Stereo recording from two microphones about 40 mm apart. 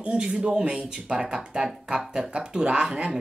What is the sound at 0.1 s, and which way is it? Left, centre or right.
Speech, right.